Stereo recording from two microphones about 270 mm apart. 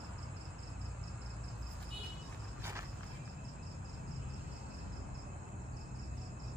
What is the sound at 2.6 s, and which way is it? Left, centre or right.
Vehicle, centre.